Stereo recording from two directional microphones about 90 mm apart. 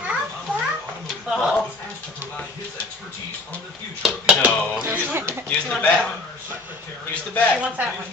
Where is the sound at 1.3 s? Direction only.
5° right (ahead or behind).